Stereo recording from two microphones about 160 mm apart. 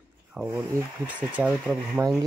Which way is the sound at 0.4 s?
5° right (ahead or behind).